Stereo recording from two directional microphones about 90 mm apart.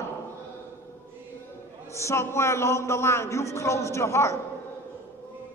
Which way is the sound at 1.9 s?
30° left (ahead or behind).